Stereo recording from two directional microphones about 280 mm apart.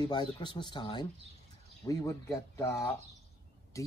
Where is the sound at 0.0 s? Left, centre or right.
Centre.